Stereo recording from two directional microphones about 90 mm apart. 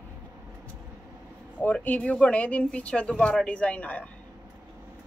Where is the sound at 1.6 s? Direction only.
15° left (ahead or behind).